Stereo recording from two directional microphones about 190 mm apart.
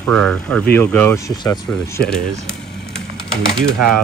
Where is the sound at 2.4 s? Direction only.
5° left (ahead or behind).